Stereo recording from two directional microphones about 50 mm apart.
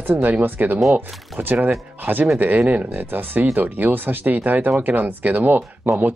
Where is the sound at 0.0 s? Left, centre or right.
Right.